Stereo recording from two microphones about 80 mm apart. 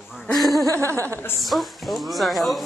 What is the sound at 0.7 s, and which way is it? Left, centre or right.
Speech, right.